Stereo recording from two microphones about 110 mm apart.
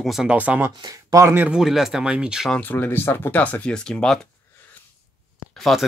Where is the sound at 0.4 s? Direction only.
15° right (ahead or behind).